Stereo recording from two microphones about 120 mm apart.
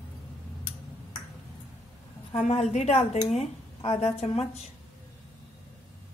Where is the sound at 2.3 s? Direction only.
60° left (ahead or behind).